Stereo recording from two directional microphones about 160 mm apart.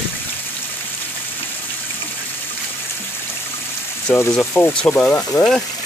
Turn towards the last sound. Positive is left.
turn(degrees=5)  # may be behind; listen again after turning